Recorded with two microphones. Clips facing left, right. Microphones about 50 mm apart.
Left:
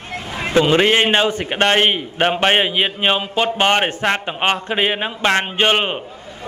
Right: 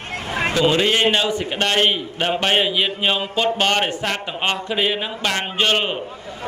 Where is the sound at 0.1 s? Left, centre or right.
Right.